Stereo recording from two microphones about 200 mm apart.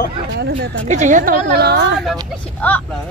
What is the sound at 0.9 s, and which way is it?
A woman's voice, 40° right (ahead or behind).